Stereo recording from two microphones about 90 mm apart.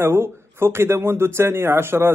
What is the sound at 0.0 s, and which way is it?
A man's voice, 25° right (ahead or behind).